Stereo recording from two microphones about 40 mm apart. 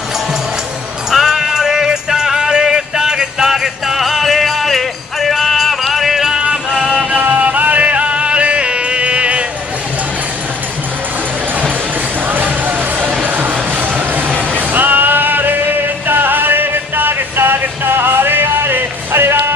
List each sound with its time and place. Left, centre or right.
1.1 s music: centre
6.3 s music: right
6.7 s music: centre
7.2 s music: right
12.4 s music: right
14.5 s music: right